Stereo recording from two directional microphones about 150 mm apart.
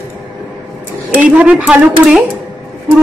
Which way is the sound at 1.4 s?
10° right (ahead or behind).